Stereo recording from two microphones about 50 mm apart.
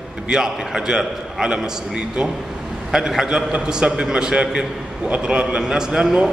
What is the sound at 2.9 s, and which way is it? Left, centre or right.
A man's voice, centre.